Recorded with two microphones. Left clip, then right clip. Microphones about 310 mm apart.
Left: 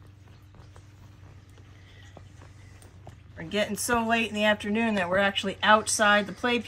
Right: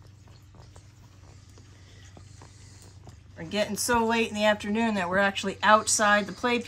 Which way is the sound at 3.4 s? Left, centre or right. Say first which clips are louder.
Even; right.